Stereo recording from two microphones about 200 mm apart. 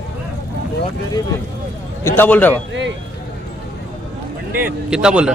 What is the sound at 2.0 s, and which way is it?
Speech, 10° left (ahead or behind).